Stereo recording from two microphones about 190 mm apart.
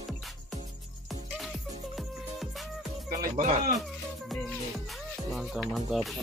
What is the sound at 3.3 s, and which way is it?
Music, 40° right (ahead or behind).